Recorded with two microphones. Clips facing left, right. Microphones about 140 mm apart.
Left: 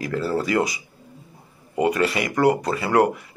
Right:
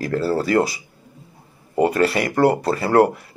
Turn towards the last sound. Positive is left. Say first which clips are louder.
# right 3 dB
turn(degrees=-40)  # may be behind; listen again after turning